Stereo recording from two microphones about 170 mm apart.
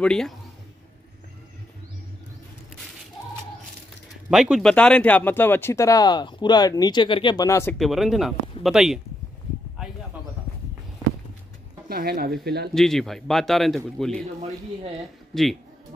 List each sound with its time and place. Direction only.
0.0 s a man's voice: 5° left (ahead or behind)
4.3 s speech: 5° right (ahead or behind); by 7.7 s 15° left (ahead or behind)
7.7 s a man's voice: centre (ahead or behind)
11.9 s speech: 65° right (ahead or behind)
12.7 s a man's voice: centre (ahead or behind)
15.3 s a man's voice: 5° left (ahead or behind)